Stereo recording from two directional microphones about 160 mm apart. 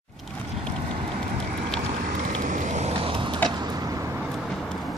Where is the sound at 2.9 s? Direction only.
30° right (ahead or behind).